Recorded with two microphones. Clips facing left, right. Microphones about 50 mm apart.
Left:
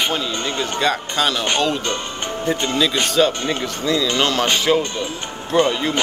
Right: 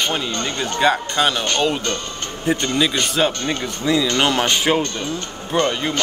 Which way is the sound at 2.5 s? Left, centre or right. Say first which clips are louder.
Right 2 dB; centre.